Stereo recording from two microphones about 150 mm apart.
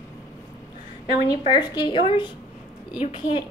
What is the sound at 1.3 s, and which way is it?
A woman's voice, 30° left (ahead or behind).